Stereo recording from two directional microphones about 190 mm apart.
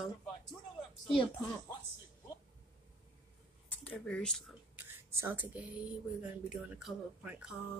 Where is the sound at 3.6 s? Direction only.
5° left (ahead or behind).